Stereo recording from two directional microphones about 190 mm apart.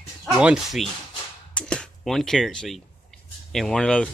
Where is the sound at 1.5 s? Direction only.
5° left (ahead or behind).